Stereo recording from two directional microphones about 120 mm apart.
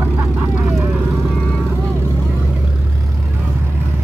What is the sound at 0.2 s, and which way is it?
Vehicle, 25° right (ahead or behind).